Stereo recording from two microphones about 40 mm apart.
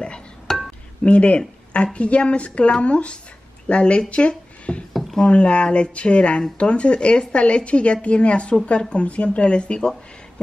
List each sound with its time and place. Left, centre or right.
0.5 s chink: centre
1.0 s a woman's voice: left
4.1 s a sound: left
5.2 s speech: left